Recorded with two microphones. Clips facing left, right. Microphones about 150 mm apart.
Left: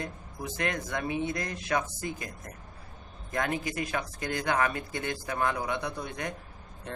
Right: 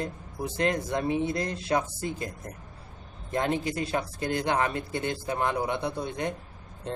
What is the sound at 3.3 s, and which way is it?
A man's voice, 30° right (ahead or behind).